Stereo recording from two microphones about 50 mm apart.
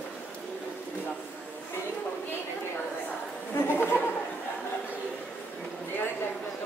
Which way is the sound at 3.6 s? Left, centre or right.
Left.